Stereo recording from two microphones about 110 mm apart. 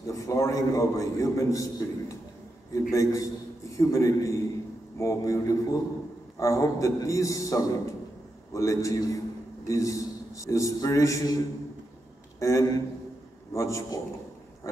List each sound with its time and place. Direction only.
0.0 s a man's voice: 30° left (ahead or behind)